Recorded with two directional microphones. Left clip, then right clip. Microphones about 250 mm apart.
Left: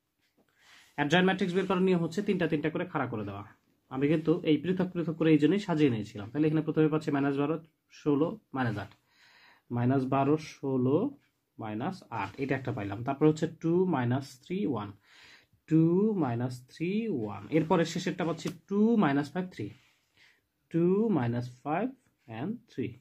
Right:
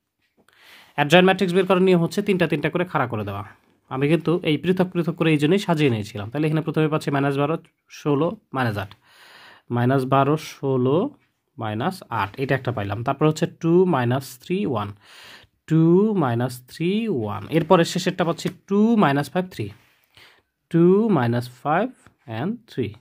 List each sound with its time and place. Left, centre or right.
0.9 s speech: right